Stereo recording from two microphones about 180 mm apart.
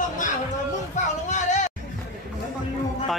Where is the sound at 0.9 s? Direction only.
40° left (ahead or behind).